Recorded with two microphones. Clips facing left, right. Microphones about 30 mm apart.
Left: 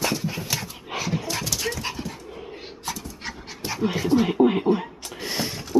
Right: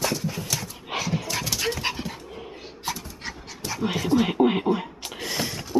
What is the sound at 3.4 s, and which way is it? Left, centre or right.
Dog, centre.